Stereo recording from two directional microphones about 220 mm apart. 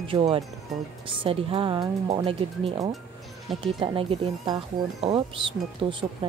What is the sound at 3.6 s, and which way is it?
Speech, 25° right (ahead or behind).